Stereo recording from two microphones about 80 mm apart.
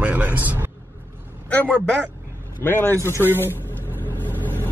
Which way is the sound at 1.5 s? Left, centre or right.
Centre.